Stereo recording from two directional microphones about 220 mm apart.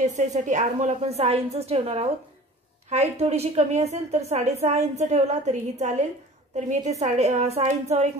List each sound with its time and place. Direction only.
0.0 s a woman's voice: 30° right (ahead or behind)